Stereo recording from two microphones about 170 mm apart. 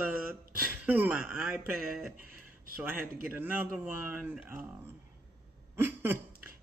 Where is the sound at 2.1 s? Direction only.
55° right (ahead or behind).